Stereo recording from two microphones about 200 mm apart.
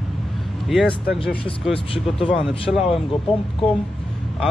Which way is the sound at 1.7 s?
25° left (ahead or behind).